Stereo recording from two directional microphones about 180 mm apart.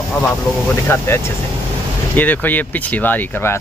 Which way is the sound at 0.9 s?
15° left (ahead or behind).